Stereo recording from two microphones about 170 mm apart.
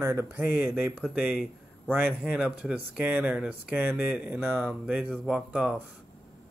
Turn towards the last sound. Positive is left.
turn(degrees=-5)  # may be behind; listen again after turning